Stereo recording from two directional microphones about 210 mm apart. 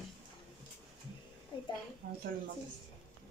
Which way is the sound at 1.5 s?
25° left (ahead or behind).